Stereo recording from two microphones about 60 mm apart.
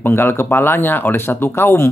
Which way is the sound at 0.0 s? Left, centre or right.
Left.